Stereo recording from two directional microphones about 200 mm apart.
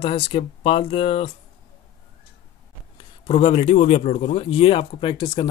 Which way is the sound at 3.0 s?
25° left (ahead or behind).